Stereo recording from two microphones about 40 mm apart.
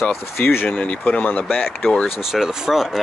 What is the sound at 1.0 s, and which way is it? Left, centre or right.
Speech, left.